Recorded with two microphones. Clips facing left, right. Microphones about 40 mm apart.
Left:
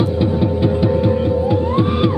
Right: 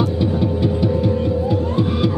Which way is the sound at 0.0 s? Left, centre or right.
Centre.